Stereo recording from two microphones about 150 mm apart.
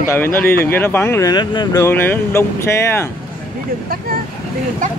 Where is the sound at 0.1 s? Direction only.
15° left (ahead or behind).